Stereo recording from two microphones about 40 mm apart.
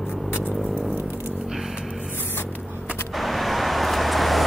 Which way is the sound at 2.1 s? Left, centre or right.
Left.